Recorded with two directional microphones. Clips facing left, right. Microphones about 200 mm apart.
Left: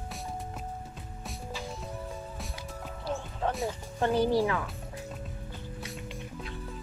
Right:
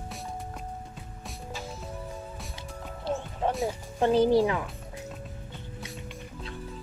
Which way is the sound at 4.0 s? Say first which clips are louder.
Right 4 dB; 20° right (ahead or behind).